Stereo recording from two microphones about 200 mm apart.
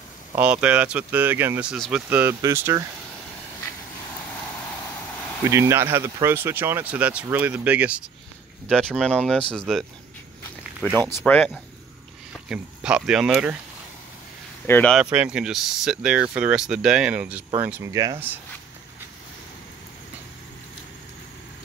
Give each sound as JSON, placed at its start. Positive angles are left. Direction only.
{"t": 0.4, "sound": "speech", "side_deg": -5}
{"t": 5.5, "sound": "speech", "side_deg": -15}
{"t": 8.6, "sound": "speech", "side_deg": 5}
{"t": 14.7, "sound": "speech", "side_deg": 5}
{"t": 15.0, "sound": "speech", "side_deg": -5}